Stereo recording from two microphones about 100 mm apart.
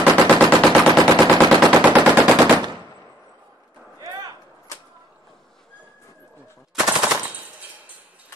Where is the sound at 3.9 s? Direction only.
40° right (ahead or behind).